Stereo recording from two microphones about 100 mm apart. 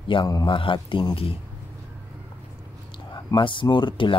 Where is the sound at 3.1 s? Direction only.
55° left (ahead or behind).